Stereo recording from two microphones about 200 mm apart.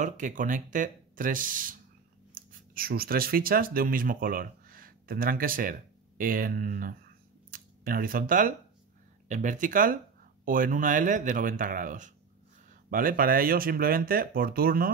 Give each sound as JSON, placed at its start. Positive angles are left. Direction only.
{"t": 0.0, "sound": "speech", "side_deg": -40}